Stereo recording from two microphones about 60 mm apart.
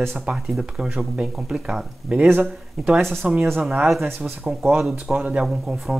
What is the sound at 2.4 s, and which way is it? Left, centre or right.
Speech, centre.